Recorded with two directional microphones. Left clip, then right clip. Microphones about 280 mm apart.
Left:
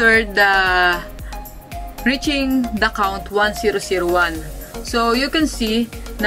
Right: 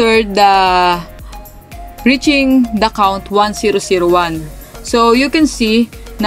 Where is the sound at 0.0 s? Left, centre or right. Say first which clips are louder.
Right 4 dB; centre.